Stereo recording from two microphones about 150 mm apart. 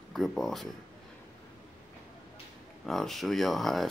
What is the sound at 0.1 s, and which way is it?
Speech, centre (ahead or behind).